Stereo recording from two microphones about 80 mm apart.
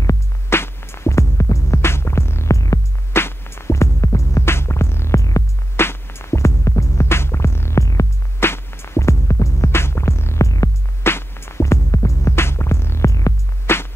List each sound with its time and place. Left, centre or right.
0.5 s music: left
3.2 s music: left
8.4 s music: left
11.1 s music: left